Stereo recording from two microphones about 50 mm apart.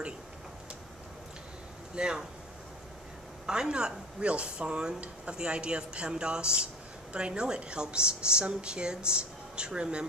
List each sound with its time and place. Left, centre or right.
2.0 s speech: centre
3.4 s speech: centre